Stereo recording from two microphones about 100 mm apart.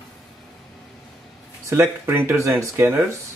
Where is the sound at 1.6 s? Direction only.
30° right (ahead or behind).